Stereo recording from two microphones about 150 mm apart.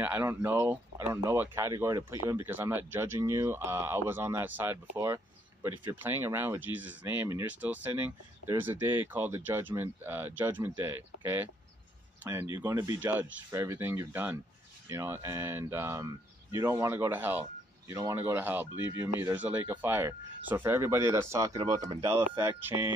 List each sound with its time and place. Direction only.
0.0 s speech: 15° right (ahead or behind)